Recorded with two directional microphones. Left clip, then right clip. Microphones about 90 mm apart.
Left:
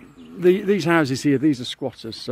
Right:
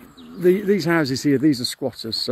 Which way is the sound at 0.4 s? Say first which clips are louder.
Even; 40° left (ahead or behind).